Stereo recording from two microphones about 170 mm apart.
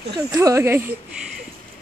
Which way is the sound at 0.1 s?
20° right (ahead or behind).